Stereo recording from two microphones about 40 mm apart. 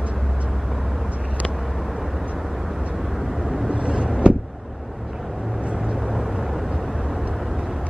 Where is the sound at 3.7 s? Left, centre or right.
Right.